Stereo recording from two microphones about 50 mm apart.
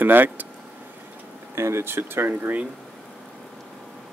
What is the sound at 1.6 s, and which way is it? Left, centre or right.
Speech, right.